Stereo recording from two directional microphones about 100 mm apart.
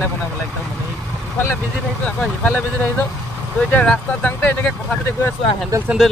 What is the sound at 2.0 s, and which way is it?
Speech, 10° left (ahead or behind).